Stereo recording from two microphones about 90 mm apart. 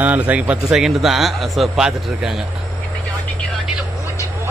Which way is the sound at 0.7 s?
Centre (ahead or behind).